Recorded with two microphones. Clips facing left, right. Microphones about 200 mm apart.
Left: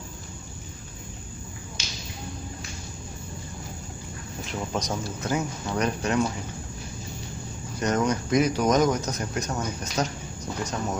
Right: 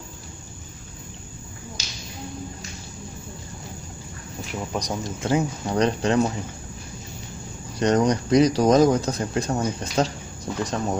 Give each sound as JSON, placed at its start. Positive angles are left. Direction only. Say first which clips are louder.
{"t": 1.8, "sound": "a sound", "louder": "left 1 dB", "side_deg": -35}
{"t": 4.6, "sound": "speech", "louder": "right 1 dB", "side_deg": -15}
{"t": 5.2, "sound": "speech", "louder": "right 7 dB", "side_deg": -30}
{"t": 7.8, "sound": "speech", "louder": "right 5 dB", "side_deg": -35}